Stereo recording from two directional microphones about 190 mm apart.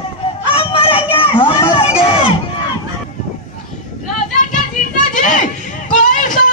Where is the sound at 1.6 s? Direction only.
30° left (ahead or behind).